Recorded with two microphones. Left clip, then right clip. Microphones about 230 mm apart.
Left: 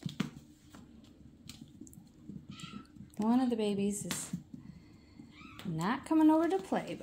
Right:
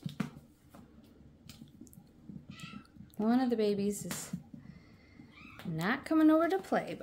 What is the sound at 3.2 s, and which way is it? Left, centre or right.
Speech, centre.